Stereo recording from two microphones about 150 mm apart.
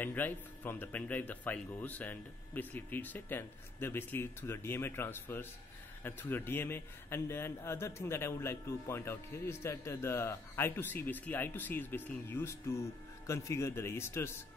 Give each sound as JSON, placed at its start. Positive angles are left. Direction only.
{"t": 0.0, "sound": "a man's voice", "side_deg": 10}